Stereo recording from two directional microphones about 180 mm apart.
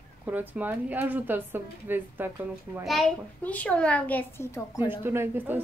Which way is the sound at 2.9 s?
5° left (ahead or behind).